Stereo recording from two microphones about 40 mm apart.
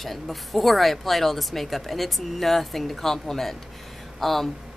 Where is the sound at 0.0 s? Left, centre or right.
Centre.